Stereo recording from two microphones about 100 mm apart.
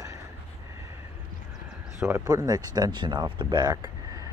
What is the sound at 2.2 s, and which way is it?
Speech, 40° right (ahead or behind).